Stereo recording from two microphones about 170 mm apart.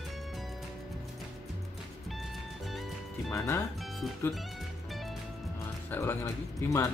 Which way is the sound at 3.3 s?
15° left (ahead or behind).